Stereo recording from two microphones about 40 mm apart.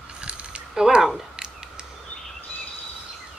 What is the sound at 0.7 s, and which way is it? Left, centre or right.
Speech, centre.